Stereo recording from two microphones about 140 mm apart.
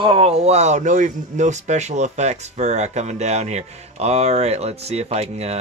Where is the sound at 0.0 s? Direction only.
40° right (ahead or behind).